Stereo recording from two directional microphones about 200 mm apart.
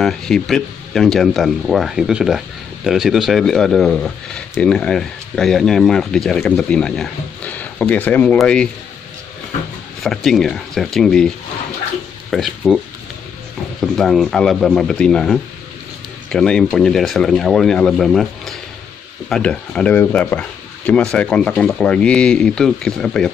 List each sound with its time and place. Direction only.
0.0 s speech: centre (ahead or behind)
10.0 s speech: centre (ahead or behind)